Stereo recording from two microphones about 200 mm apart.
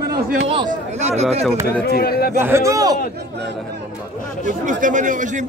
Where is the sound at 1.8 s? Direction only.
50° left (ahead or behind).